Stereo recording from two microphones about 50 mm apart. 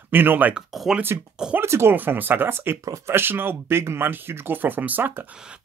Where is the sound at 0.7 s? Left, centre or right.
Centre.